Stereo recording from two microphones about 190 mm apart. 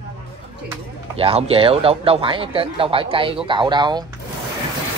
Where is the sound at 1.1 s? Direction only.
30° right (ahead or behind).